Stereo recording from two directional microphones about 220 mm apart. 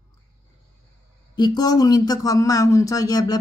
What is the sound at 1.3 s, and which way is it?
Speech, 20° left (ahead or behind).